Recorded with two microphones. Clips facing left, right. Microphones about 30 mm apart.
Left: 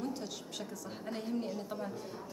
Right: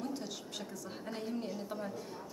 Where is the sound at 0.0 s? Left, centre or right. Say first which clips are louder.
Left 1 dB; centre.